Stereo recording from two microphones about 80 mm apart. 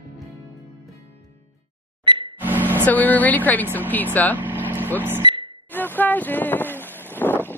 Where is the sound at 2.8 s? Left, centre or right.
Left.